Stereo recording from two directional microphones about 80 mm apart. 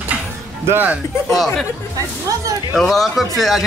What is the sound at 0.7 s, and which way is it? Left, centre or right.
Speech, right.